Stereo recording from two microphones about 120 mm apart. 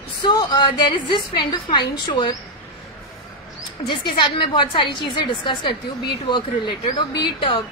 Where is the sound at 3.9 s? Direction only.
40° left (ahead or behind).